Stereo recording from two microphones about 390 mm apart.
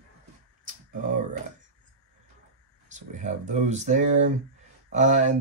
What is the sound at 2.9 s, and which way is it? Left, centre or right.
Speech, centre.